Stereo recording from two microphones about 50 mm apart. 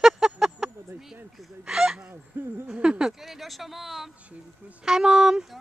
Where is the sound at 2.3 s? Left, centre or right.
Right.